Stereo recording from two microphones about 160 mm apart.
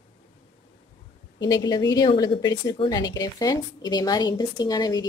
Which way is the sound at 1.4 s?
25° left (ahead or behind).